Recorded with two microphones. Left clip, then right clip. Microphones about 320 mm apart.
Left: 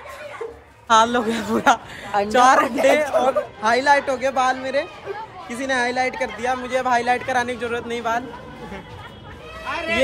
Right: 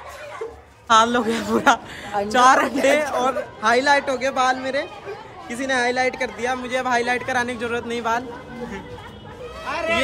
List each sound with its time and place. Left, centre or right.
0.8 s speech: centre
9.7 s run: right